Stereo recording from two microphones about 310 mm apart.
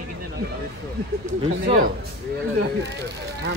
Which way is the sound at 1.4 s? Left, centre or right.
Centre.